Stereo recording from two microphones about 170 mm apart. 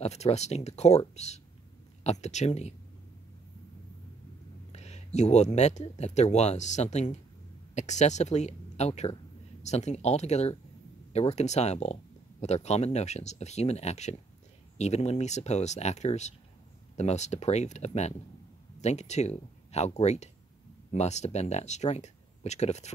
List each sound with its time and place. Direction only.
0.0 s speech: 40° left (ahead or behind)
4.7 s speech: 40° left (ahead or behind)